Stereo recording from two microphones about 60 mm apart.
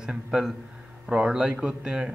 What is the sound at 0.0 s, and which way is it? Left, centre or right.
Speech, centre.